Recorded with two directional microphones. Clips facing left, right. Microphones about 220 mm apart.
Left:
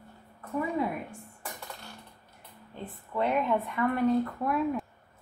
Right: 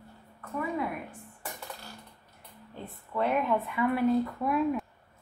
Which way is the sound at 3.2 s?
Centre (ahead or behind).